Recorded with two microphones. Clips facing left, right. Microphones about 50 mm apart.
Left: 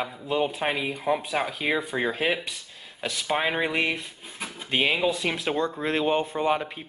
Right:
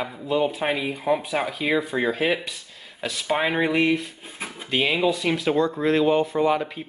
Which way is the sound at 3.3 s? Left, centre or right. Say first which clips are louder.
Right 3 dB; centre.